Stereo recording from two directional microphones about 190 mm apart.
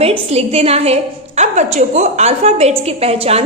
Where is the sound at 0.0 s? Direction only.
30° right (ahead or behind).